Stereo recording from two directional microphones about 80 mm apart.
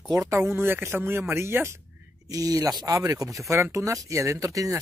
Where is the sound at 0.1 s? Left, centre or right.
Right.